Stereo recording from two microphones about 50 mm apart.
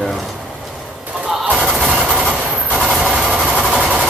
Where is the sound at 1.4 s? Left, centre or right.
Centre.